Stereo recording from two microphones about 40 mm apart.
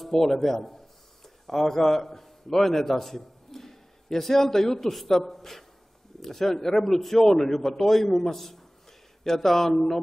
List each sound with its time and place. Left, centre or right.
0.0 s a man's voice: centre